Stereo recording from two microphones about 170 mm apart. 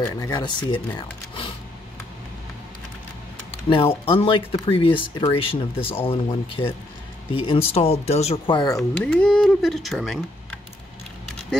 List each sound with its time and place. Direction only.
0.0 s speech: 20° left (ahead or behind)
3.7 s speech: 30° left (ahead or behind)
9.0 s speech: 5° left (ahead or behind)